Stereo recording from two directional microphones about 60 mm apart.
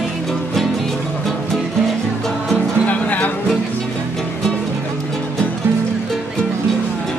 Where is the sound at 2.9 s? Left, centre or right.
Left.